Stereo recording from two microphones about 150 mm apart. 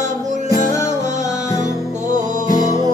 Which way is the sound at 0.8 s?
50° right (ahead or behind).